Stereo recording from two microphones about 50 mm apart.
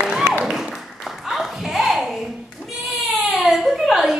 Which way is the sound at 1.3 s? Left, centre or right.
Centre.